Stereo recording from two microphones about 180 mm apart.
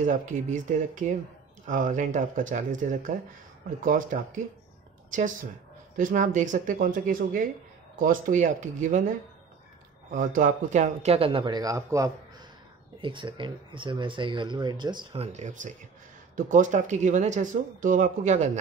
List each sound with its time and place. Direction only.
0.0 s speech: 45° right (ahead or behind)
10.1 s speech: 45° right (ahead or behind); by 15.2 s 25° right (ahead or behind)
15.3 s speech: 45° right (ahead or behind)